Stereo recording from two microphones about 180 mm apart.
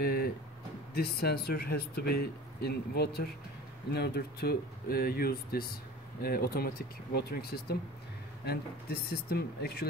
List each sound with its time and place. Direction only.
0.0 s music: 60° left (ahead or behind)
0.9 s speech: 60° left (ahead or behind)